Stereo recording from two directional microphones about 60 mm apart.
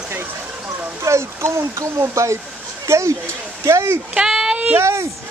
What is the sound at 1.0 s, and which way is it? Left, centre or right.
Speech, right.